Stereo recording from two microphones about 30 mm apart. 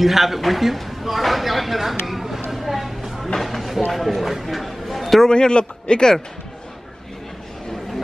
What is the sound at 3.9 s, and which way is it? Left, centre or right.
Speech, centre.